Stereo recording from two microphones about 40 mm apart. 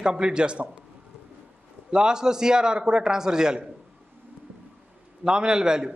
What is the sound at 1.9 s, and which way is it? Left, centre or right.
A man's voice, right.